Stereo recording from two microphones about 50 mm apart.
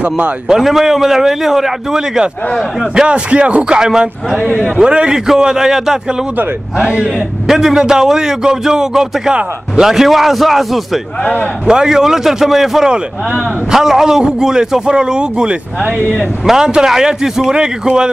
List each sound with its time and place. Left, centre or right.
0.6 s a man's voice: centre
6.8 s a man's voice: right
7.4 s a man's voice: centre
11.6 s a man's voice: centre
12.9 s a man's voice: centre